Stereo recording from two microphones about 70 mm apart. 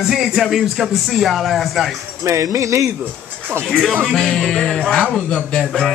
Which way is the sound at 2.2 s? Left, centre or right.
Right.